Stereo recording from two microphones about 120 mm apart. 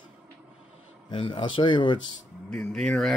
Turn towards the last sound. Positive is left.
turn(degrees=5)  # may be behind; listen again after turning